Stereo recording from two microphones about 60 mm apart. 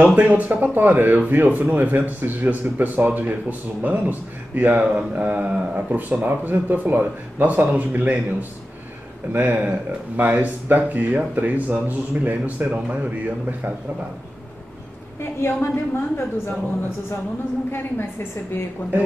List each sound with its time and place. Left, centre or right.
0.0 s a man's voice: right
12.6 s a man's voice: centre
15.4 s a woman's voice: left
17.6 s a woman's voice: left